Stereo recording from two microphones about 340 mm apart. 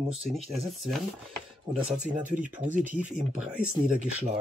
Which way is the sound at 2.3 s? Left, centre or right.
Right.